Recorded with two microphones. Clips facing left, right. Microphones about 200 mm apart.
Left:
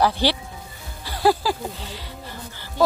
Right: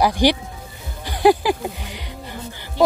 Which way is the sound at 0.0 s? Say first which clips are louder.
Right 4 dB; 15° right (ahead or behind).